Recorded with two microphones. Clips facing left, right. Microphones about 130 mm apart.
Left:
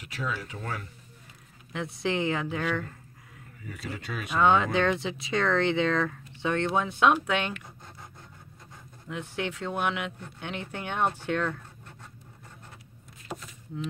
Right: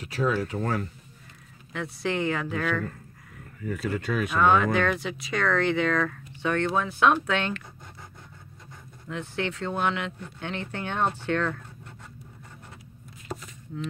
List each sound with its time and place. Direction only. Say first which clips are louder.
0.0 s speech: right 8 dB; 40° right (ahead or behind)
1.7 s speech: even; 20° left (ahead or behind)
3.6 s speech: right 9 dB; 50° right (ahead or behind)
4.4 s speech: even; 25° left (ahead or behind)
9.1 s speech: right 2 dB; 15° left (ahead or behind)